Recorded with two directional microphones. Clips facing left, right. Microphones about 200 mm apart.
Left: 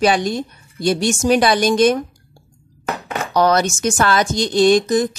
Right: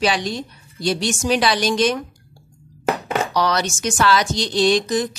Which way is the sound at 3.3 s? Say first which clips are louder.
Left 9 dB; 50° left (ahead or behind).